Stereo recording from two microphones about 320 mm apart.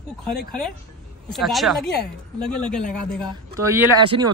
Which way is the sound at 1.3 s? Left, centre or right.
Centre.